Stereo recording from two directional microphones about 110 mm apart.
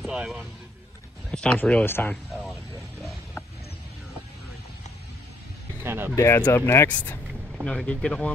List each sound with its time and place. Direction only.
0.0 s speech: 5° right (ahead or behind)
1.3 s speech: 10° left (ahead or behind)
5.9 s speech: 20° right (ahead or behind)
6.1 s speech: 25° left (ahead or behind)
6.9 s speech: 10° left (ahead or behind)